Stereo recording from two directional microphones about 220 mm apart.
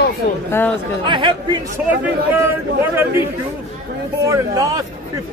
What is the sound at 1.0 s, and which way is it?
Speech, 20° right (ahead or behind).